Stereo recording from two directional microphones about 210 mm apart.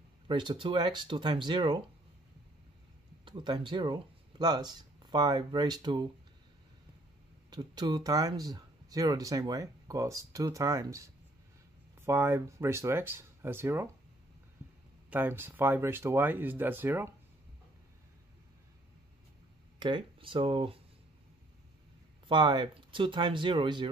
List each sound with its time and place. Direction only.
0.3 s speech: 20° right (ahead or behind)
3.3 s speech: 20° right (ahead or behind)
7.4 s speech: 20° right (ahead or behind)
15.0 s speech: 10° right (ahead or behind)
19.8 s speech: 25° right (ahead or behind)
22.3 s speech: 20° right (ahead or behind)